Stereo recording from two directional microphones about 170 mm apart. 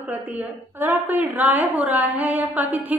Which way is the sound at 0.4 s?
10° right (ahead or behind).